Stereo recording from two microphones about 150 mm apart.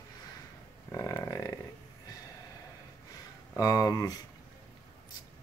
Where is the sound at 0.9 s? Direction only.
15° left (ahead or behind).